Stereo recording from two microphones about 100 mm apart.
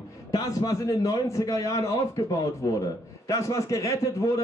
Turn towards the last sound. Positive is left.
turn(degrees=35)  # may be behind; listen again after turning